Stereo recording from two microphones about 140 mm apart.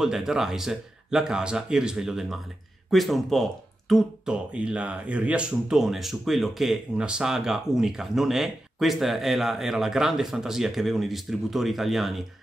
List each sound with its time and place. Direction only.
0.0 s speech: 5° right (ahead or behind)